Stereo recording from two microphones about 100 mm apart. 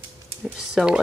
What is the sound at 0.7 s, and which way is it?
Speech, 10° right (ahead or behind).